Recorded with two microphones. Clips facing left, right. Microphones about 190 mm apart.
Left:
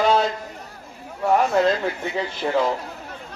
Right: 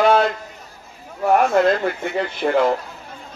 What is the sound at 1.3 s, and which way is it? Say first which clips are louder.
A man's voice: right 3 dB; 60° right (ahead or behind).